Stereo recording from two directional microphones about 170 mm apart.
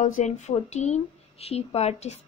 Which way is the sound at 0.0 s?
45° left (ahead or behind).